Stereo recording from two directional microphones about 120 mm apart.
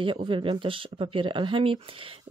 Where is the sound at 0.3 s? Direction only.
45° right (ahead or behind).